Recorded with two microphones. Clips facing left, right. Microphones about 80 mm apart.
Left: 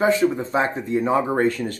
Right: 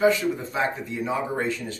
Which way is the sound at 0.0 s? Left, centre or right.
Left.